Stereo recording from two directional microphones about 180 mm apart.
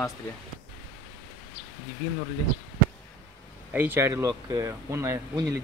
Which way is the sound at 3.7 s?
10° right (ahead or behind).